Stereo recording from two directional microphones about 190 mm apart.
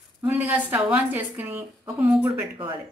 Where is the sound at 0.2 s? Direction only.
5° right (ahead or behind).